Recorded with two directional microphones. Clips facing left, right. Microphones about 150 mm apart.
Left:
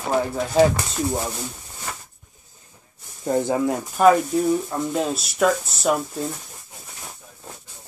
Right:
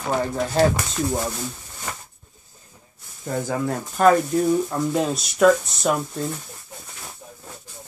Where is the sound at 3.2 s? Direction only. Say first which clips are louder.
Left 5 dB; 25° left (ahead or behind).